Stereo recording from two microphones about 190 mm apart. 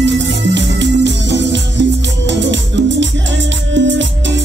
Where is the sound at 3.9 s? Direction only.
75° right (ahead or behind).